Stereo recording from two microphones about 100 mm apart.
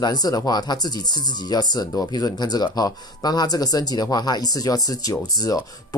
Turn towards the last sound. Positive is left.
turn(degrees=40)  # may be behind; listen again after turning